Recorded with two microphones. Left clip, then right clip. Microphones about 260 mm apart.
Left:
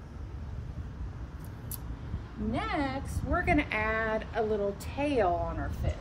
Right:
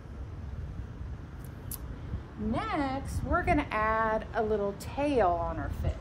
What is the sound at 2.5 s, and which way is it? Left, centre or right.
A woman's voice, centre.